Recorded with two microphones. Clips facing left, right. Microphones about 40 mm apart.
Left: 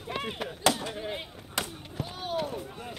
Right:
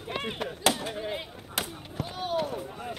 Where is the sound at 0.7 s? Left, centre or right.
Right.